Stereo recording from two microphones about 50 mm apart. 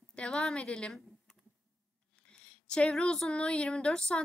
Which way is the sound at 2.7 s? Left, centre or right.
Centre.